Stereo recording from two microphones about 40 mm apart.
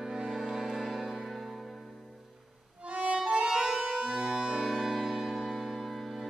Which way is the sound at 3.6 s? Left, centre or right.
Centre.